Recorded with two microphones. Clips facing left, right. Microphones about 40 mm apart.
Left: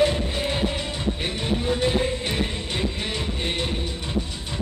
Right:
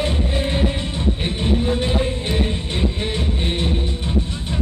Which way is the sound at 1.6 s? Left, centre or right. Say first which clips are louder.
Right 2 dB; centre.